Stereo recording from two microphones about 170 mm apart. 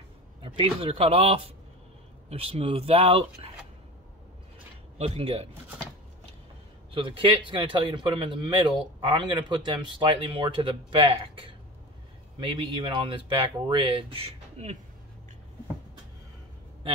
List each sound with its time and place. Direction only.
0.4 s speech: 30° right (ahead or behind)
4.9 s speech: 35° right (ahead or behind)
6.9 s speech: 30° right (ahead or behind)